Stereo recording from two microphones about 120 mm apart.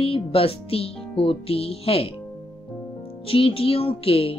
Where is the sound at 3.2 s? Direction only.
50° left (ahead or behind).